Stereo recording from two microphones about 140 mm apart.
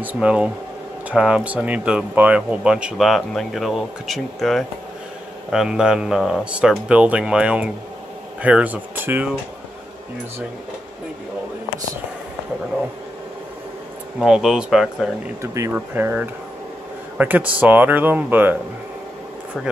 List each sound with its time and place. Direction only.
0.0 s speech: 10° right (ahead or behind)
14.2 s speech: 5° right (ahead or behind)
15.7 s speech: 15° right (ahead or behind)